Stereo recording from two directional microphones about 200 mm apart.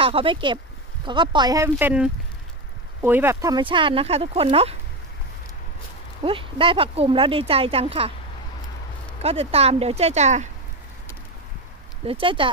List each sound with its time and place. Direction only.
0.0 s speech: 25° right (ahead or behind)
6.2 s speech: 25° right (ahead or behind)
9.2 s speech: 30° right (ahead or behind)
12.1 s speech: 25° right (ahead or behind)